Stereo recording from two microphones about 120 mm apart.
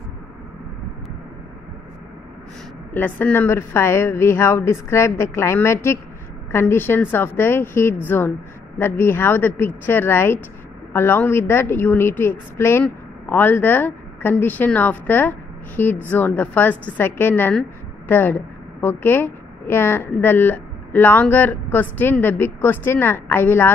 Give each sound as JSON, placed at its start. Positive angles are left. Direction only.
{"t": 2.9, "sound": "a woman's voice", "side_deg": 15}